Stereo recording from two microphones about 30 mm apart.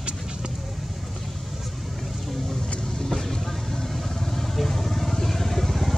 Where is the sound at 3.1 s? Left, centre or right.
Centre.